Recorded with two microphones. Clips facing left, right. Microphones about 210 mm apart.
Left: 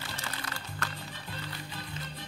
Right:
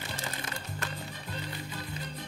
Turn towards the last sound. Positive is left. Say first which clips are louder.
# right 1 dB
turn(degrees=-20)  # may be behind; listen again after turning